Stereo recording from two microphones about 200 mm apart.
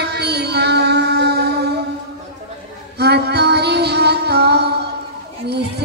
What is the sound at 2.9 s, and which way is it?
Music, 55° right (ahead or behind).